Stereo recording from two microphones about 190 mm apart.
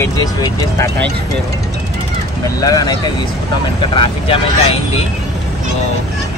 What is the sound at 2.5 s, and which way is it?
Speech, 20° left (ahead or behind).